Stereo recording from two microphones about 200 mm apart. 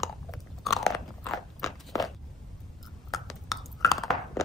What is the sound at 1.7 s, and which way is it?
Walk, centre (ahead or behind).